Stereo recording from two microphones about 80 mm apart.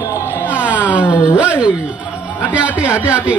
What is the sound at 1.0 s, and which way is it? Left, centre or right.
Speech, left.